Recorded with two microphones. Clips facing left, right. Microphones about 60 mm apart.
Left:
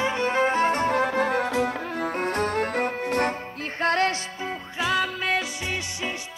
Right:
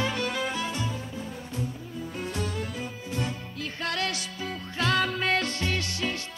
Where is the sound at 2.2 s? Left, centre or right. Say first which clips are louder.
Left 7 dB; left.